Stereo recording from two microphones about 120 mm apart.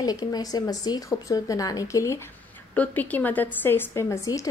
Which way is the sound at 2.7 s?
15° left (ahead or behind).